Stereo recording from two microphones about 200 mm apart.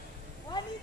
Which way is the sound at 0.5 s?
20° left (ahead or behind).